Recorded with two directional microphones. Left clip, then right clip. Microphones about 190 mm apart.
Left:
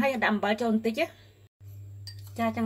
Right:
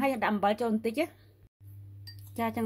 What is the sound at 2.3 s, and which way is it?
Speech, 45° right (ahead or behind).